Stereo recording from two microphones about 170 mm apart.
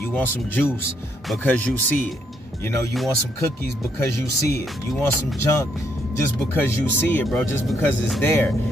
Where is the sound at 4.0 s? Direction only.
15° left (ahead or behind).